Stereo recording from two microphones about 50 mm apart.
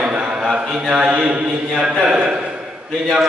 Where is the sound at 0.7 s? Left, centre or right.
Centre.